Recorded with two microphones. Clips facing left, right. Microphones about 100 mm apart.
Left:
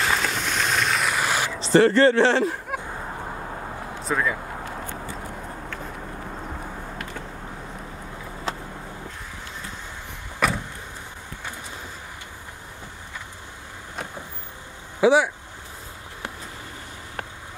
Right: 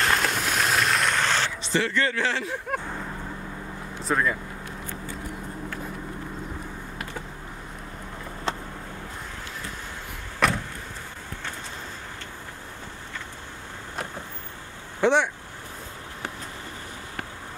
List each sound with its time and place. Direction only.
0.0 s vehicle: centre (ahead or behind)
1.6 s speech: 40° left (ahead or behind)
4.0 s speech: centre (ahead or behind)
10.4 s vehicle: centre (ahead or behind)
15.0 s speech: 5° left (ahead or behind)